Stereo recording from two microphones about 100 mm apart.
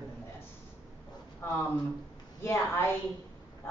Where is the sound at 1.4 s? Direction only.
20° left (ahead or behind).